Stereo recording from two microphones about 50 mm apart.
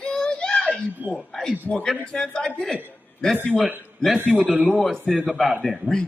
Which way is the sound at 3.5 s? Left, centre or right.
Centre.